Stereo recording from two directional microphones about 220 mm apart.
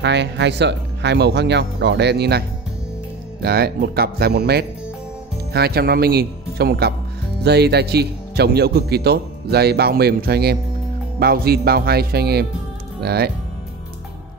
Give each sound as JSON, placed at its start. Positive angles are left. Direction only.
{"t": 0.0, "sound": "speech", "side_deg": -50}
{"t": 3.4, "sound": "speech", "side_deg": -45}